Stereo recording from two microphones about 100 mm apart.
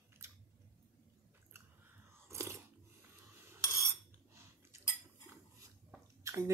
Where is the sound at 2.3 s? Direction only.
30° right (ahead or behind).